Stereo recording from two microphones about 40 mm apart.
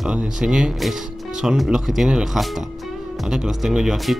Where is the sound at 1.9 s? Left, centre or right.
Centre.